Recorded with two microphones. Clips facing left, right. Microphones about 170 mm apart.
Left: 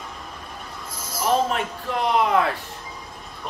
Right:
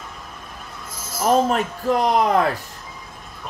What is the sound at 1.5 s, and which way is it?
Speech, 40° right (ahead or behind).